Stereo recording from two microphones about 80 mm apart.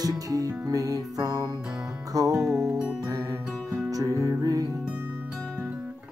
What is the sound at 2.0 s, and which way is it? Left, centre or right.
Music, right.